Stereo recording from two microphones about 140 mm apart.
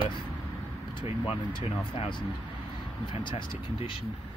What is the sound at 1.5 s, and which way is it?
Speech, 35° left (ahead or behind).